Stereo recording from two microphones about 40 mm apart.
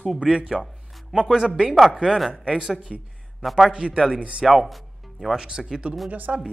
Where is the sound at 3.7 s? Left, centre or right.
Centre.